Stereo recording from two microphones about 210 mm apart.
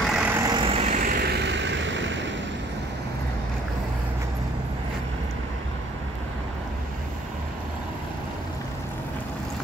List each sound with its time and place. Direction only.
0.0 s vehicle: 5° right (ahead or behind); by 2.2 s 60° right (ahead or behind)